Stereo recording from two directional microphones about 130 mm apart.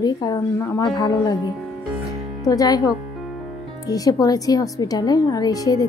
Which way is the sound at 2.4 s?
25° left (ahead or behind).